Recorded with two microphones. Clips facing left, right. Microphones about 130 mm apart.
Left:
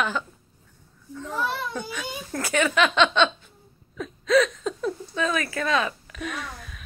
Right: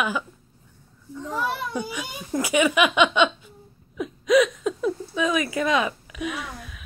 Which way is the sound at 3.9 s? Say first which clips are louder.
Right 2 dB; 10° right (ahead or behind).